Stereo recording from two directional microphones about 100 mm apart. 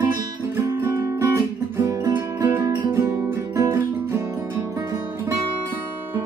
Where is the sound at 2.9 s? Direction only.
20° right (ahead or behind).